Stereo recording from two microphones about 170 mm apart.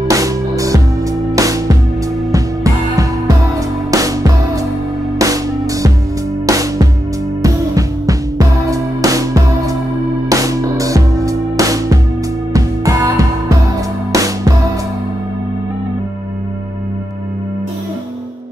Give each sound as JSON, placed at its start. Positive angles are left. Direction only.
{"t": 0.1, "sound": "music", "side_deg": -20}